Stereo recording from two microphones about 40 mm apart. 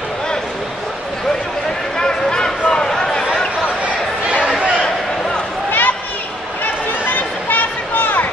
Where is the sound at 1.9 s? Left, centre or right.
Centre.